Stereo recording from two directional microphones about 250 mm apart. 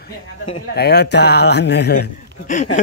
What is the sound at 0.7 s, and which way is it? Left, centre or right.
Speech, left.